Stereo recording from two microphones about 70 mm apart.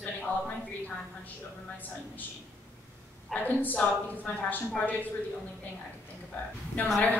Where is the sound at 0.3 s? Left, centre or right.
Left.